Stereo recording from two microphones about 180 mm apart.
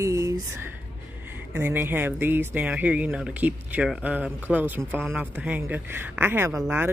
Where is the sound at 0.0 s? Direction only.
20° right (ahead or behind).